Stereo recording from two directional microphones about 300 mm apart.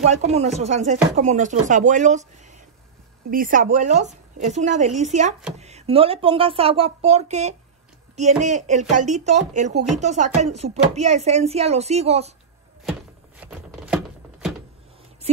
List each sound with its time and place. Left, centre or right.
0.0 s speech: right
3.3 s speech: right
13.4 s chopping: centre